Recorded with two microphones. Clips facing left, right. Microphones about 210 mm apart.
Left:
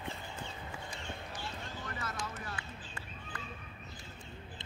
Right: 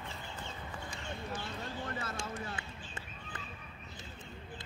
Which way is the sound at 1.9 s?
30° right (ahead or behind).